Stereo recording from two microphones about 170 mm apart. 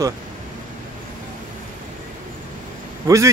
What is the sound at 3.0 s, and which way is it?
Speech, 20° right (ahead or behind).